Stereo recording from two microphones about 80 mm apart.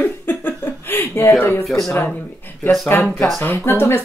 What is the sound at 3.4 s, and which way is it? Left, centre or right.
Speech, left.